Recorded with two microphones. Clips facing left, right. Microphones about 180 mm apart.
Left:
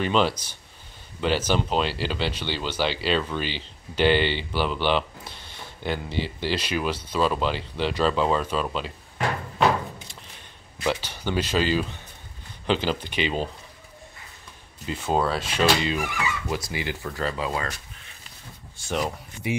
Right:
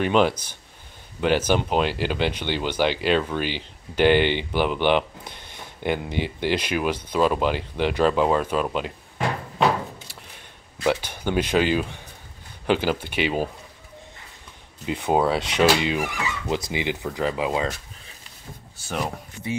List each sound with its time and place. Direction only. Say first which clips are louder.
0.0 s speech: right 3 dB; 15° right (ahead or behind)
10.8 s speech: right 4 dB; 15° right (ahead or behind)
14.9 s speech: right 3 dB; 15° right (ahead or behind)